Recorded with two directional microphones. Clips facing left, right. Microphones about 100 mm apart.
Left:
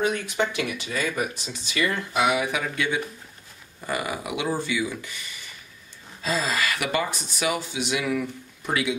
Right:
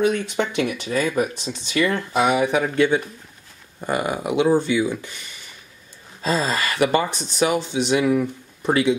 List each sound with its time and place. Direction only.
0.6 s speech: 35° right (ahead or behind)
6.2 s speech: 35° right (ahead or behind)